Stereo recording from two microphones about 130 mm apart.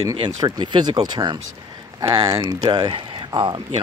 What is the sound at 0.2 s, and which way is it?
Speech, 35° right (ahead or behind).